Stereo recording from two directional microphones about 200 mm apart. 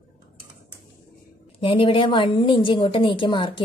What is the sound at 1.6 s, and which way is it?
A woman's voice, 25° left (ahead or behind).